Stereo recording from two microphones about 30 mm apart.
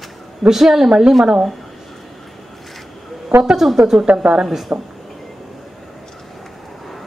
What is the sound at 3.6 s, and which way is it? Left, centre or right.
Speech, centre.